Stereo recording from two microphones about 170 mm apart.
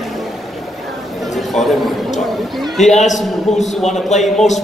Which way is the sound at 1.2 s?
Centre (ahead or behind).